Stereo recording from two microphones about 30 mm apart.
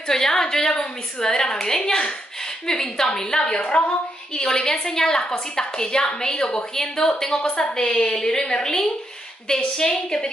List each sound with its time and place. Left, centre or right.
0.1 s a woman's voice: centre